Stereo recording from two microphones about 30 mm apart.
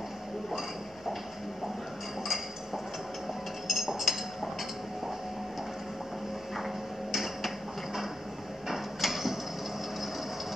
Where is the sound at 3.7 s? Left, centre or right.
Centre.